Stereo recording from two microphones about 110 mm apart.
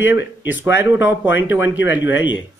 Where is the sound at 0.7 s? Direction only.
20° right (ahead or behind).